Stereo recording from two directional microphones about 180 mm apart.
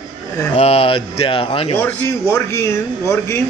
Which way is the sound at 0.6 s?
35° left (ahead or behind).